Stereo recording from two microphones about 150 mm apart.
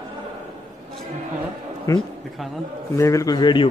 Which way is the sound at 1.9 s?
20° left (ahead or behind).